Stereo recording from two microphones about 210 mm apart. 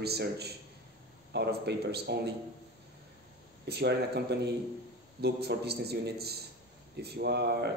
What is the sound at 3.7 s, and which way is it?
A man's voice, 50° right (ahead or behind).